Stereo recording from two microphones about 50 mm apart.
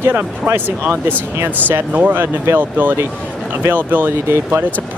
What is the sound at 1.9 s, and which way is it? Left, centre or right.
Speech, right.